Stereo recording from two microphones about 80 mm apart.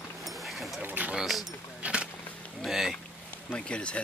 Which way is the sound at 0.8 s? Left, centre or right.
Right.